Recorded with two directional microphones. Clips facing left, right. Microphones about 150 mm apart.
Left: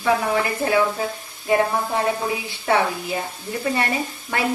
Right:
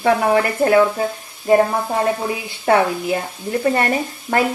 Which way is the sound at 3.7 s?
45° right (ahead or behind).